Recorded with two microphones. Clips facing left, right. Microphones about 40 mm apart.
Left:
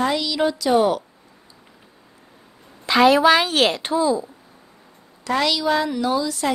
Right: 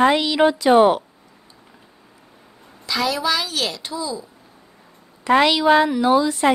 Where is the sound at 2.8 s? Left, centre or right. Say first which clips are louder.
Left 8 dB; left.